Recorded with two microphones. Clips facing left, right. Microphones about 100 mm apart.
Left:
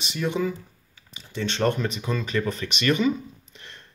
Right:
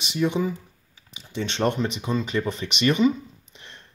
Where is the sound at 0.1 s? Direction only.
20° right (ahead or behind).